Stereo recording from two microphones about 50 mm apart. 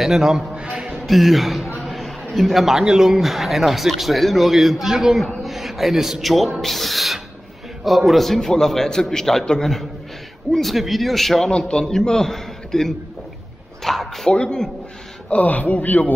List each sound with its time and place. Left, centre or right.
0.0 s speech: centre
1.8 s a sound: centre
2.3 s speech: centre
11.4 s a man's voice: centre
14.2 s a man's voice: centre
15.2 s speech: left